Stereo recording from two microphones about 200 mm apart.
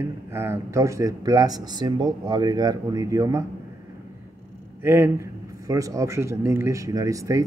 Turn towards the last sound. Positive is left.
turn(degrees=-15)  # may be behind; listen again after turning